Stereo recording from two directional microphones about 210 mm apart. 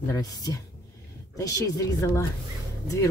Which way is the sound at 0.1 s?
15° left (ahead or behind).